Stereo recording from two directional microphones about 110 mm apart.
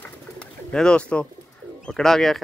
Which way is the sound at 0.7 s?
10° left (ahead or behind).